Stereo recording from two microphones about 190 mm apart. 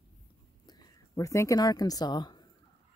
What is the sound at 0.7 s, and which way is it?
Speech, 20° left (ahead or behind).